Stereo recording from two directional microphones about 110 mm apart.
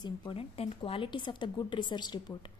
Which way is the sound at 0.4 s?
60° left (ahead or behind).